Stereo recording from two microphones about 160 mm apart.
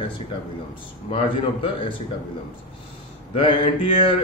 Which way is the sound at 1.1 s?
35° left (ahead or behind).